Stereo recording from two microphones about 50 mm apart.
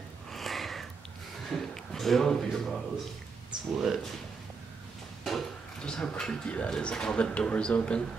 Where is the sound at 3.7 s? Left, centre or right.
Centre.